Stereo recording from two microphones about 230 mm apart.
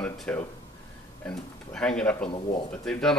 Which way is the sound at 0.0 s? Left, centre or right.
Centre.